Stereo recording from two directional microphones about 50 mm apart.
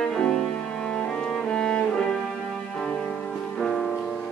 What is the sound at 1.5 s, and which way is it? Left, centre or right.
Cello, centre.